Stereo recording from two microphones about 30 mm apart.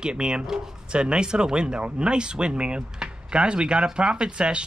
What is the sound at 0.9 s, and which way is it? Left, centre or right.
Speech, right.